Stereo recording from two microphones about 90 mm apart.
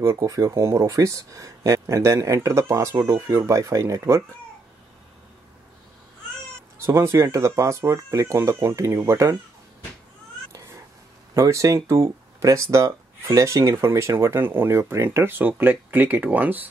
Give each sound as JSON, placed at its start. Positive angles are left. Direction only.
{"t": 0.0, "sound": "speech", "side_deg": -30}
{"t": 6.8, "sound": "speech", "side_deg": -30}
{"t": 11.3, "sound": "speech", "side_deg": -35}